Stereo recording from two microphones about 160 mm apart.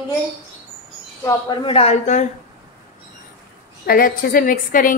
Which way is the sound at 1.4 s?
35° left (ahead or behind).